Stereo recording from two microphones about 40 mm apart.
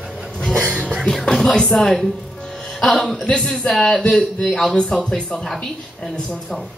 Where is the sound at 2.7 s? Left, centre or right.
Centre.